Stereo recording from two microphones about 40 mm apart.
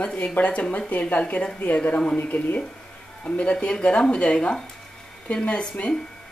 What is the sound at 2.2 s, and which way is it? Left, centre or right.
Speech, left.